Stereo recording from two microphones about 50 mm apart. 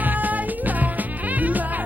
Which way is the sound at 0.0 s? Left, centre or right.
Right.